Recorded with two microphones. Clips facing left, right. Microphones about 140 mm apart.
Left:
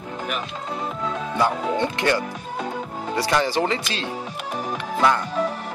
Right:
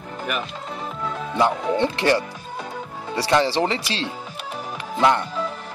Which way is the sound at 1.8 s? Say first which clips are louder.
Right 3 dB; 30° right (ahead or behind).